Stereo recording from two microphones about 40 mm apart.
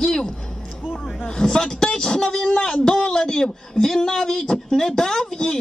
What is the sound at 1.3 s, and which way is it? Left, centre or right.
A man's voice, left.